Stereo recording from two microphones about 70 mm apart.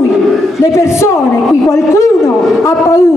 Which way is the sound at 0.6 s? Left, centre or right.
Left.